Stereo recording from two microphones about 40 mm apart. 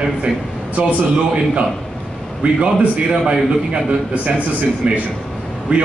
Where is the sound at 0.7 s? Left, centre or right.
Right.